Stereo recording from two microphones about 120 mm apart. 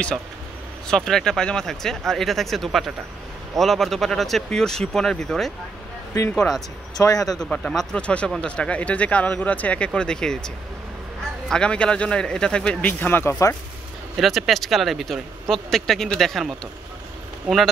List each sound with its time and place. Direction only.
0.8 s speech: 5° left (ahead or behind)
7.0 s speech: 30° left (ahead or behind)
7.3 s speech: 5° left (ahead or behind)
14.1 s speech: centre (ahead or behind)